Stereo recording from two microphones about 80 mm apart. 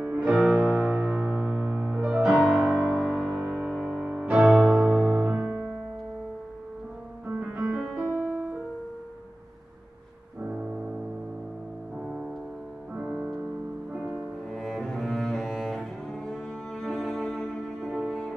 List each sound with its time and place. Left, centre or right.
0.0 s music: centre
7.2 s music: centre
12.9 s music: centre
14.5 s cello: centre